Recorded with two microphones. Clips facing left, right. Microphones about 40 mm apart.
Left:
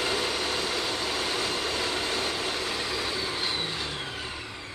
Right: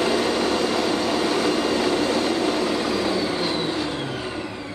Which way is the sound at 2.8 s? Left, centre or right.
Right.